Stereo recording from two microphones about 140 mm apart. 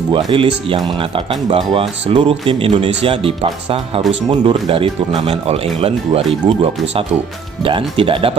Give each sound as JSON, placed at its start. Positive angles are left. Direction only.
{"t": 0.1, "sound": "speech", "side_deg": -40}